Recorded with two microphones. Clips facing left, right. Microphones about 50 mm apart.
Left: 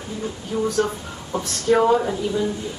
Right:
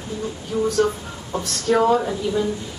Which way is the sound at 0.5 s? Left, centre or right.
Centre.